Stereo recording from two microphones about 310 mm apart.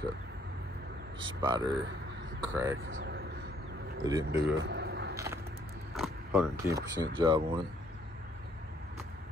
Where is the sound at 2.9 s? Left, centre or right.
Right.